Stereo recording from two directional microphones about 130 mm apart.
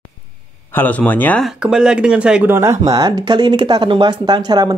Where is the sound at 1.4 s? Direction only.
5° right (ahead or behind).